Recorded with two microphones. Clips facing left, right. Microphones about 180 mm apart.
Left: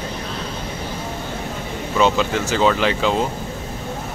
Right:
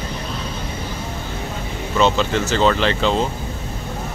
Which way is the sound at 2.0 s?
10° left (ahead or behind).